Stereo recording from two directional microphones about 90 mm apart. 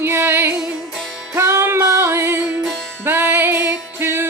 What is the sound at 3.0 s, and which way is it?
Music, 25° right (ahead or behind).